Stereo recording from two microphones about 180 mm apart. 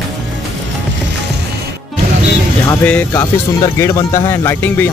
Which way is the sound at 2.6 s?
10° left (ahead or behind).